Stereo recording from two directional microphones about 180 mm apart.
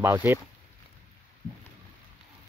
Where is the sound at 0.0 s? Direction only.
15° right (ahead or behind).